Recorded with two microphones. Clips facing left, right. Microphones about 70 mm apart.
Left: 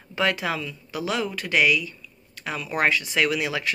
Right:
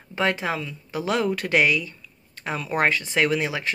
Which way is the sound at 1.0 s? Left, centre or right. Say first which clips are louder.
Right 4 dB; right.